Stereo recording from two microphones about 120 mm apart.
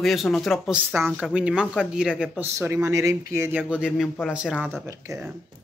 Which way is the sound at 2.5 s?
25° right (ahead or behind).